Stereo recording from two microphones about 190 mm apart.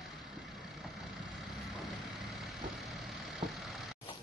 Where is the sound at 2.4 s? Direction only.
Centre (ahead or behind).